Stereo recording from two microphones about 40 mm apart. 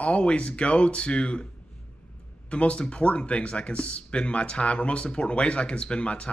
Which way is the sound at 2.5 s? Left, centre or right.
Left.